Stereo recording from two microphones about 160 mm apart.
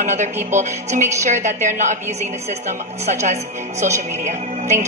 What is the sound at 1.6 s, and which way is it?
Music, 50° right (ahead or behind).